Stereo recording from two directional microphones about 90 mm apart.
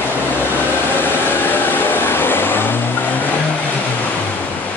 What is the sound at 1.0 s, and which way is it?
Vehicle, 20° left (ahead or behind).